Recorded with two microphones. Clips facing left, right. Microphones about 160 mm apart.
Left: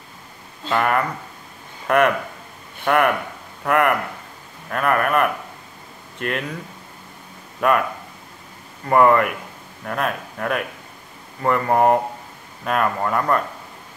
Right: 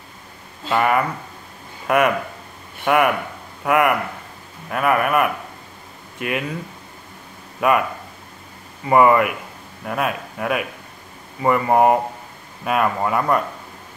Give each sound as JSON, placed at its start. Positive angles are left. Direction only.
{"t": 0.7, "sound": "speech", "side_deg": -5}
{"t": 7.6, "sound": "speech", "side_deg": -5}
{"t": 8.8, "sound": "speech", "side_deg": -5}